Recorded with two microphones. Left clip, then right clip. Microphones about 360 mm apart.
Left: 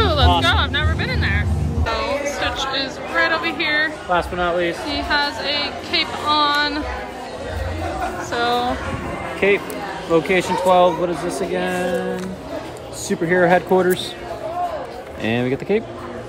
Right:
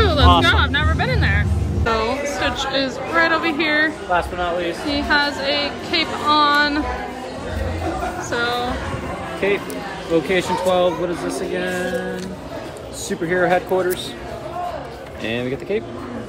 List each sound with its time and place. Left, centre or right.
0.0 s a sound: centre
1.9 s speech: centre
4.1 s speech: left
4.8 s a woman's voice: centre
8.3 s a woman's voice: centre
10.1 s speech: centre
13.2 s speech: left
15.2 s speech: left